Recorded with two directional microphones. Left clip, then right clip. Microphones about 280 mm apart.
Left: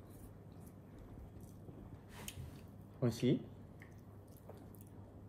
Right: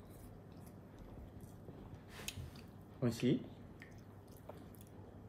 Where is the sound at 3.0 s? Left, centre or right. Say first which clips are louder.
Left 1 dB; centre.